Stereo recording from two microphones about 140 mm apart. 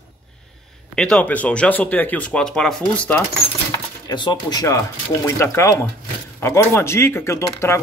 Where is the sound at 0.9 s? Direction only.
5° left (ahead or behind).